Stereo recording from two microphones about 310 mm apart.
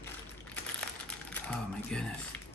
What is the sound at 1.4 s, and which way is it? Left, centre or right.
Speech, centre.